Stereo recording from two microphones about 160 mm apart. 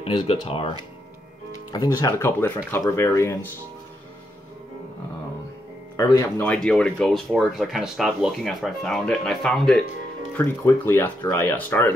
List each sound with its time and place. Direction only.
0.0 s speech: 35° left (ahead or behind)
1.7 s speech: 25° left (ahead or behind)
5.9 s speech: 20° left (ahead or behind)
6.4 s speech: 5° left (ahead or behind)
10.3 s speech: 15° left (ahead or behind)